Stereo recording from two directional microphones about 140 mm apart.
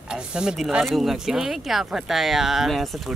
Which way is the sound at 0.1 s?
5° right (ahead or behind).